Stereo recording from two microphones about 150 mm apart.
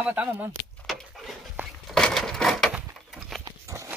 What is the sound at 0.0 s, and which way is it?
Speech, 10° right (ahead or behind).